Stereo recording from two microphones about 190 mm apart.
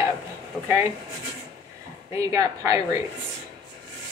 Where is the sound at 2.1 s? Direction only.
15° right (ahead or behind).